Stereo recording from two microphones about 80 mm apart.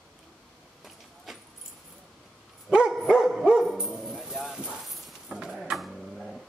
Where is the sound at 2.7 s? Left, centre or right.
Centre.